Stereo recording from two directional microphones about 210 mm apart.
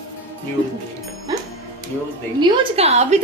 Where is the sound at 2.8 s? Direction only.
30° right (ahead or behind).